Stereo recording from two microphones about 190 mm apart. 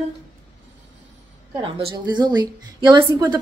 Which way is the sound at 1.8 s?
25° right (ahead or behind).